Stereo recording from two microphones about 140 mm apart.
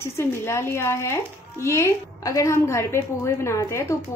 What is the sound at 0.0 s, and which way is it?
Speech, 20° left (ahead or behind).